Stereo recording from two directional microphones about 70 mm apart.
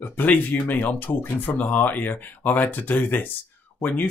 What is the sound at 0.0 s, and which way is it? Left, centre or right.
Speech, left.